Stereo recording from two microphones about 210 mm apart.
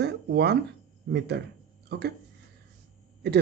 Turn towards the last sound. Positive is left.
turn(degrees=-50)  # may be behind; listen again after turning